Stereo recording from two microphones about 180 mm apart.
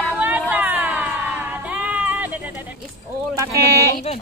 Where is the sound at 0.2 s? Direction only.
10° right (ahead or behind).